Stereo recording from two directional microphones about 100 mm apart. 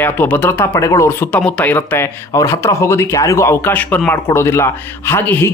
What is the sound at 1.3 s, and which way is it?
Speech, 10° left (ahead or behind).